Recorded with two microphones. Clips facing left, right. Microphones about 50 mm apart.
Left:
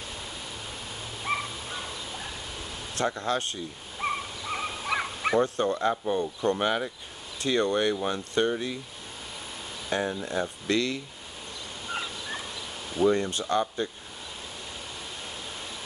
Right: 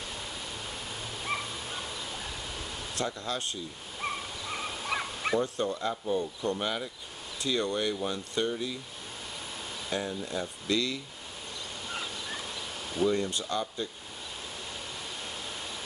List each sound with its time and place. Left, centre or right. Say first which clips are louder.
0.1 s waterfall: even; centre
1.2 s a sound: left 4 dB; centre
1.5 s turkey: left 1 dB; centre
3.0 s speech: left 6 dB; left
4.0 s dog: left 4 dB; centre
5.4 s speech: left 5 dB; left
9.8 s speech: left 5 dB; left
12.0 s fowl: left 2 dB; centre
13.1 s speech: left 4 dB; left
15.2 s waterfall: even; centre